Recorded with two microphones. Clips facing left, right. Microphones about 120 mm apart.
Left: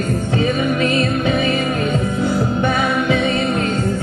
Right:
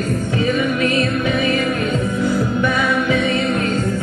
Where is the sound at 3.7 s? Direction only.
Centre (ahead or behind).